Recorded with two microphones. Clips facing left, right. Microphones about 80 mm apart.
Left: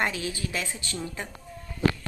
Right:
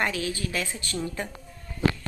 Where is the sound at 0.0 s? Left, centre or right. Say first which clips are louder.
Right 1 dB; left.